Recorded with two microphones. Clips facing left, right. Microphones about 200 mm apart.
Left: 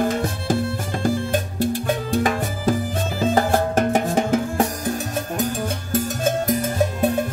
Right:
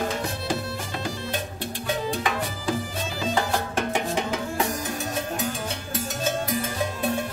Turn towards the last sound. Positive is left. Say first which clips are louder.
# left 6 dB
turn(degrees=45)  # may be behind; listen again after turning